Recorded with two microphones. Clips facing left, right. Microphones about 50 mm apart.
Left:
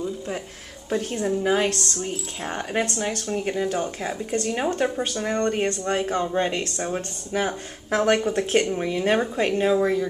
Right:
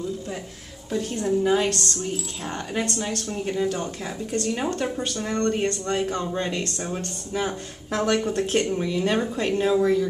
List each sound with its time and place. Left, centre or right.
0.8 s a woman's voice: left
1.1 s speech: left